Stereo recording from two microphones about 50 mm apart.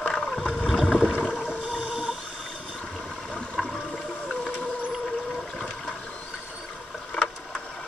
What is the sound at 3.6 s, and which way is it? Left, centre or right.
Toilet flush, centre.